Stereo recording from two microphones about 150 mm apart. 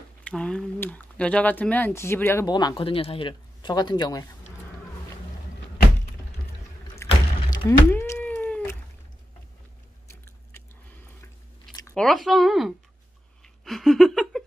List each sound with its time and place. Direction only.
0.2 s speech: 5° left (ahead or behind)
2.4 s speech: 30° left (ahead or behind)
7.0 s a sound: 15° left (ahead or behind)
7.5 s cat: 15° left (ahead or behind)
11.9 s speech: 5° left (ahead or behind)
13.7 s a sound: centre (ahead or behind)